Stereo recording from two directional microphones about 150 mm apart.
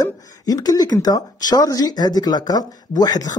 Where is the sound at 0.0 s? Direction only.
25° left (ahead or behind).